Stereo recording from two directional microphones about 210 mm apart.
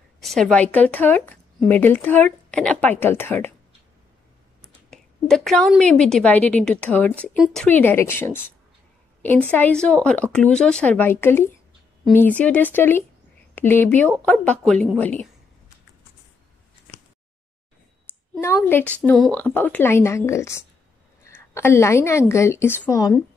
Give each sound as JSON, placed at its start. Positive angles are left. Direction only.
{"t": 0.2, "sound": "speech", "side_deg": 0}
{"t": 4.9, "sound": "a woman's voice", "side_deg": 0}
{"t": 9.5, "sound": "speech", "side_deg": 5}
{"t": 18.4, "sound": "a woman's voice", "side_deg": 10}